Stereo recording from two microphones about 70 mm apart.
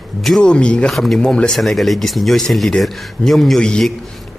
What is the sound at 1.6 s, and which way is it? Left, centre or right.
Speech, centre.